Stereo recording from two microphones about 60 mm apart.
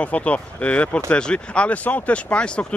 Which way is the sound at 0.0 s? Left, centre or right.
Left.